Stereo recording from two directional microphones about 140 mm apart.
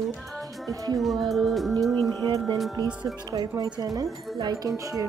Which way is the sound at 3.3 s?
30° right (ahead or behind).